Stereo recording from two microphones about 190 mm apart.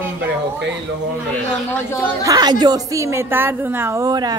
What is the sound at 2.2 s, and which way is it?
A woman's voice, 20° right (ahead or behind).